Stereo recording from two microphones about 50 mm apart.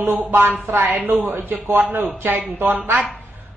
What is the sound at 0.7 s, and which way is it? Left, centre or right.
Mantra, right.